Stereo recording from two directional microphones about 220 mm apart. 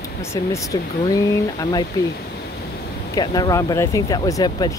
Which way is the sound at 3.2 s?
15° left (ahead or behind).